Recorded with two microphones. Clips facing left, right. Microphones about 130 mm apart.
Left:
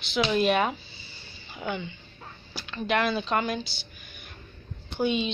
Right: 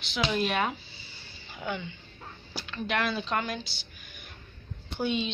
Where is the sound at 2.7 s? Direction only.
5° left (ahead or behind).